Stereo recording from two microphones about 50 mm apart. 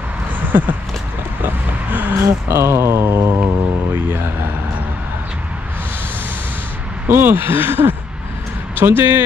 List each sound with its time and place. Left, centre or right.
0.5 s speech: right
1.4 s a sound: right
2.2 s speech: right
7.1 s speech: right